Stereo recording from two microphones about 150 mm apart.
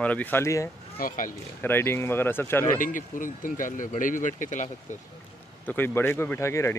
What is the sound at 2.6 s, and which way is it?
Speech, 60° left (ahead or behind).